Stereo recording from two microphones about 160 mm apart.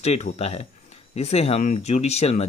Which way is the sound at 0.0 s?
40° left (ahead or behind).